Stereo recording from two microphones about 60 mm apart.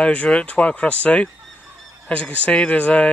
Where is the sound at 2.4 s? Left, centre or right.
Left.